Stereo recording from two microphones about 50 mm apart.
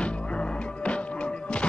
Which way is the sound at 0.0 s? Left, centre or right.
Left.